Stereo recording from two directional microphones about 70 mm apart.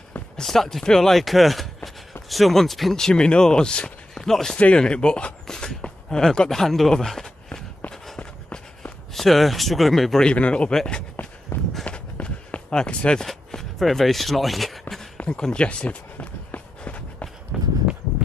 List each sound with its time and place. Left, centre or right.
0.4 s speech: centre
8.2 s run: left
9.1 s speech: centre
10.2 s speech: centre
10.8 s a sound: centre
11.8 s walk: centre
15.1 s run: centre
17.5 s walk: centre